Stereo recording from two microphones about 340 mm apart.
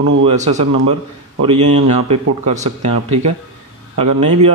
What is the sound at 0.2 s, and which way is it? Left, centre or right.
Speech, centre.